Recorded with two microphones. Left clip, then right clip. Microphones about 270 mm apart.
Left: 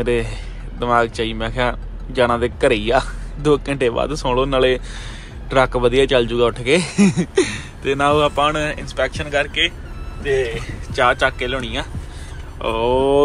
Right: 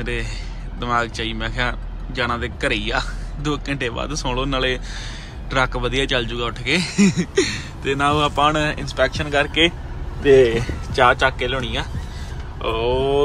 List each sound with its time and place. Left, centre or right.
0.0 s speech: centre; by 9.8 s right
10.2 s speech: right
10.9 s speech: centre